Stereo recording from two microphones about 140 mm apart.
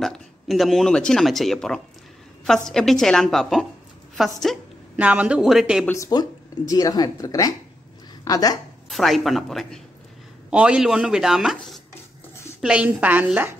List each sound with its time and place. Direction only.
0.0 s speech: centre (ahead or behind)
4.9 s a woman's voice: 10° right (ahead or behind)
5.9 s a woman's voice: 25° left (ahead or behind)
8.9 s a woman's voice: centre (ahead or behind)